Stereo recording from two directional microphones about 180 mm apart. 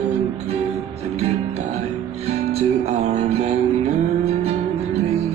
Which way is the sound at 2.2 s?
35° right (ahead or behind).